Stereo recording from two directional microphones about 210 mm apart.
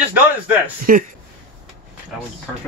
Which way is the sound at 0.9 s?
45° right (ahead or behind).